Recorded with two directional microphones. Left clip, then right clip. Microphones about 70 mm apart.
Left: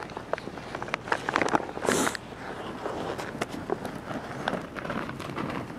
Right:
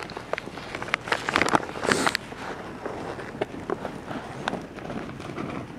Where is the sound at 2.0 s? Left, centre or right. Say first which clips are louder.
Right 5 dB; right.